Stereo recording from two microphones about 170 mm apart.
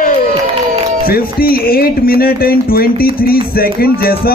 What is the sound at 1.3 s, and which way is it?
Music, 60° left (ahead or behind).